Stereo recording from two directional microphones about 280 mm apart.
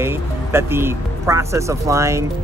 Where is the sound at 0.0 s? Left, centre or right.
Centre.